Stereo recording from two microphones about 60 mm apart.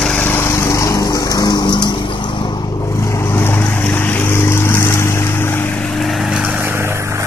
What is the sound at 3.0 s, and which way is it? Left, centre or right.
Vehicle, left.